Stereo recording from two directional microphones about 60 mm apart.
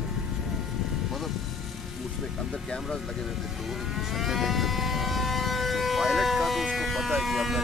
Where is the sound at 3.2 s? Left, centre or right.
Centre.